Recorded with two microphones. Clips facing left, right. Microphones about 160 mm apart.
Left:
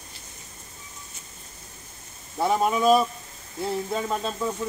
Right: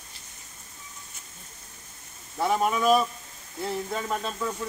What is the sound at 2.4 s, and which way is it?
Speech, 20° left (ahead or behind).